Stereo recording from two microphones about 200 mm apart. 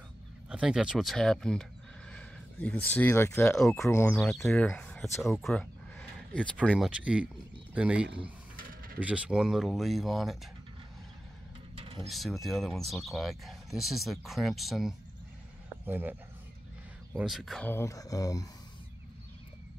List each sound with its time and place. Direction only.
0.5 s speech: 5° right (ahead or behind)
6.9 s speech: 5° right (ahead or behind)
8.5 s mechanisms: 45° right (ahead or behind)
9.0 s speech: 5° right (ahead or behind)
11.7 s mechanisms: 30° right (ahead or behind)
12.1 s speech: centre (ahead or behind)
17.2 s speech: centre (ahead or behind); by 18.5 s 15° left (ahead or behind)